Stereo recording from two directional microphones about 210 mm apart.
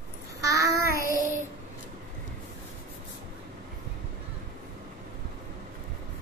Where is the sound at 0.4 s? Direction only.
15° right (ahead or behind).